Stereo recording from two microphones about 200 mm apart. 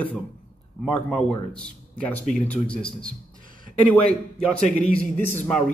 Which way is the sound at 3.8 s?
5° left (ahead or behind).